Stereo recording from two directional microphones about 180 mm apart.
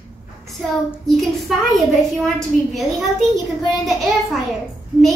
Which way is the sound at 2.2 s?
Centre (ahead or behind).